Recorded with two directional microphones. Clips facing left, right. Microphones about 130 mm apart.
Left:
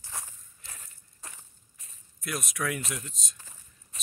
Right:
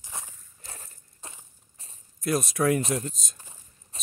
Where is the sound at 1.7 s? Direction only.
35° right (ahead or behind).